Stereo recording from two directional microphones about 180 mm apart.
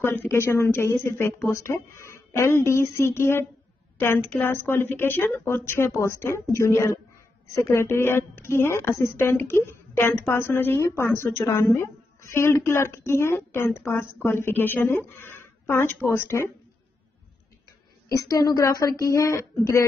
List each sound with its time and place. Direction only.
0.0 s a woman's voice: 10° left (ahead or behind)
18.1 s speech: 20° left (ahead or behind)